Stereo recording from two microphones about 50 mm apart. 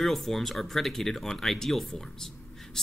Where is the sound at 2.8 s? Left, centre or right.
Centre.